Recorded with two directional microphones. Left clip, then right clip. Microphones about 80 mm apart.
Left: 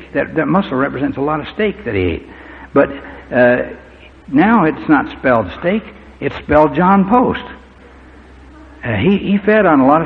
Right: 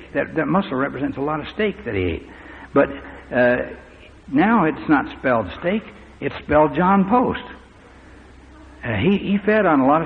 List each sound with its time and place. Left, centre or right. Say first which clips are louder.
0.1 s speech: left 5 dB; right
0.8 s a man's voice: left 6 dB; centre
1.1 s a man's voice: left 6 dB; centre
1.8 s a man's voice: left 6 dB; centre; by 2.9 s right
2.9 s a man's voice: left 5 dB; centre
5.0 s a man's voice: left 6 dB; centre
5.5 s speech: left 5 dB; centre
6.1 s a man's voice: left 5 dB; centre
7.2 s a man's voice: left 6 dB; centre
8.8 s speech: left 5 dB; right
9.4 s a man's voice: left 6 dB; centre